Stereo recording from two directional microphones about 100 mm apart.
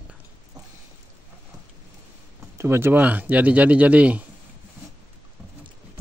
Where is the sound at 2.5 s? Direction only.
25° right (ahead or behind).